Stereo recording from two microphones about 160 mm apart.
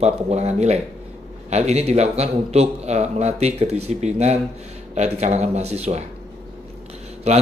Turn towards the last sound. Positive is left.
turn(degrees=-45)  # may be behind; listen again after turning